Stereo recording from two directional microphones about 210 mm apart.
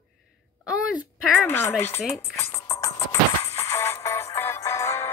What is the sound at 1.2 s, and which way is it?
Speech, 10° left (ahead or behind).